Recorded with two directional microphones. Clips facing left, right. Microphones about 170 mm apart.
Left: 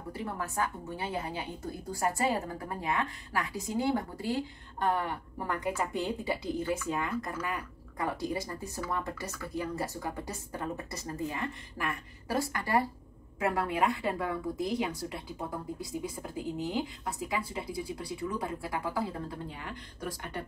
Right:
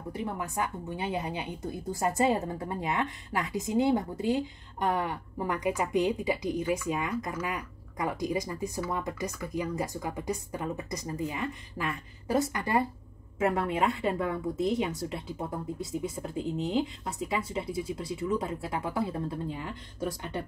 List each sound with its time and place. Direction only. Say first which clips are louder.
0.1 s a woman's voice: right 2 dB; 20° right (ahead or behind)